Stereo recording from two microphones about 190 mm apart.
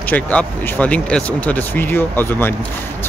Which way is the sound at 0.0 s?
5° left (ahead or behind).